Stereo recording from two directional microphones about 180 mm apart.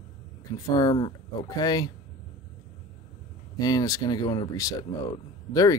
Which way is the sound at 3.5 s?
20° left (ahead or behind).